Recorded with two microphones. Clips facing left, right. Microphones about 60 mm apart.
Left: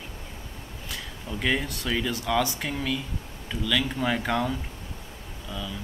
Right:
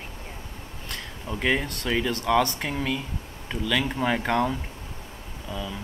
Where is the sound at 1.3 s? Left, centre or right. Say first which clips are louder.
Right 2 dB; centre.